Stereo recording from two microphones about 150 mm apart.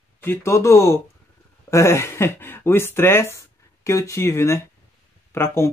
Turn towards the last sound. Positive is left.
turn(degrees=15)  # may be behind; listen again after turning